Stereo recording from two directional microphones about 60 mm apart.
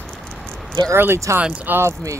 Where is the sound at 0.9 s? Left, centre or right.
Right.